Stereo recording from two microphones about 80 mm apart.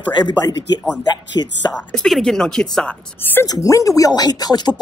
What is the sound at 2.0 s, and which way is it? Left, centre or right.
Speech, centre.